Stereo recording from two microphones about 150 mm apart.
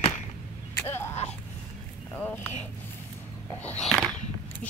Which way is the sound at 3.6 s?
5° left (ahead or behind).